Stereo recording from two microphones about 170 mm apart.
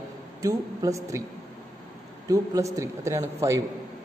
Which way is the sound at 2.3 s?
20° right (ahead or behind).